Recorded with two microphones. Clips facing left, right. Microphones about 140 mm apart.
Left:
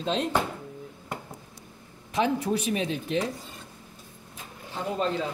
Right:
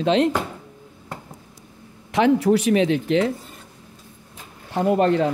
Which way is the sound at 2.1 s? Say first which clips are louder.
Right 9 dB; 80° right.